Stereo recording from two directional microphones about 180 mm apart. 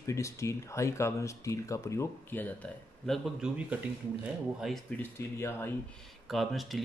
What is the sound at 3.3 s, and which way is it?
Speech, 5° right (ahead or behind).